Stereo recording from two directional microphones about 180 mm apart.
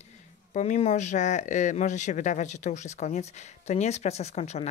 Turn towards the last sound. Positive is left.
turn(degrees=35)  # may be behind; listen again after turning